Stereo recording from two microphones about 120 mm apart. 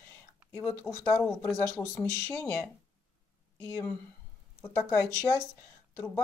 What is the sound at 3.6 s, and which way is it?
Speech, 20° left (ahead or behind).